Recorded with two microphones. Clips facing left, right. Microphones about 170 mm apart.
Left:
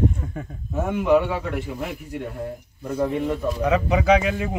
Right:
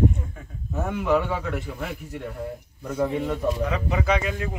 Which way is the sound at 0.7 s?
10° left (ahead or behind).